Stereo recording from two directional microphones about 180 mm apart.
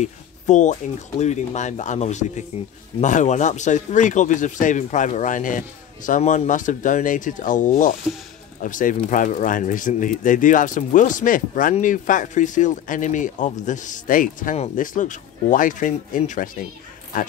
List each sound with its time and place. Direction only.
0.0 s speech: 40° left (ahead or behind)